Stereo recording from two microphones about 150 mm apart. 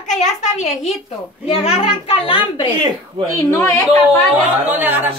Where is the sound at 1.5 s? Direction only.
40° left (ahead or behind).